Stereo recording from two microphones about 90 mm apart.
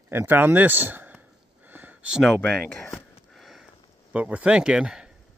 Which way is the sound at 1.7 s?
20° right (ahead or behind).